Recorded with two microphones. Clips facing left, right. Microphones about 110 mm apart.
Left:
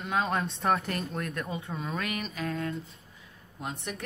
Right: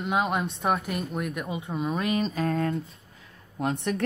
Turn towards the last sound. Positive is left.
turn(degrees=-65)  # may be behind; listen again after turning